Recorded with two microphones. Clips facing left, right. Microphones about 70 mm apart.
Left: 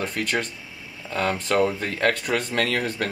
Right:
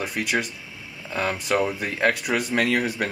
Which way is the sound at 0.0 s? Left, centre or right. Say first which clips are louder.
Even; centre.